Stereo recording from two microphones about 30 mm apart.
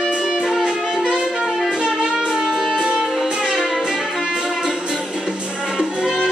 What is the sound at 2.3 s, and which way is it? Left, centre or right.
Music, right.